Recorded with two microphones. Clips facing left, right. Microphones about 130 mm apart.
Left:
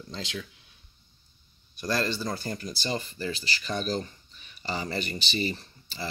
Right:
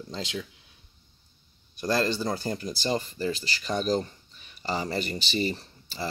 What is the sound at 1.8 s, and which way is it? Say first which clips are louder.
Speech: right 3 dB; 30° right (ahead or behind).